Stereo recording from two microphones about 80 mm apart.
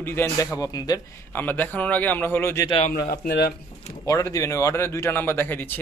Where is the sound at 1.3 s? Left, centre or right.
Left.